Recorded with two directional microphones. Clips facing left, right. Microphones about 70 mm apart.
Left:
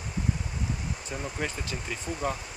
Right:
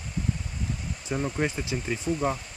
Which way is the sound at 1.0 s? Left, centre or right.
Centre.